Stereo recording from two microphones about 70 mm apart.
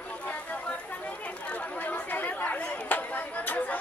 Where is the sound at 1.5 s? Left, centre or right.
Centre.